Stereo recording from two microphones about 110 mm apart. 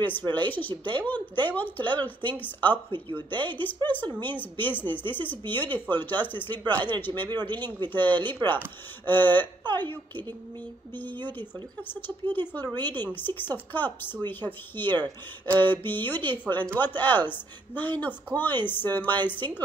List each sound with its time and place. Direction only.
0.0 s a woman's voice: 15° left (ahead or behind)
7.5 s speech: 40° right (ahead or behind)
7.9 s a woman's voice: 15° left (ahead or behind)
11.9 s a woman's voice: 20° left (ahead or behind)